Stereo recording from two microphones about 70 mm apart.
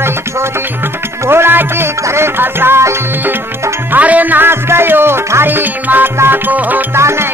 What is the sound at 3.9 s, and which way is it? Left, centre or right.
Music, right.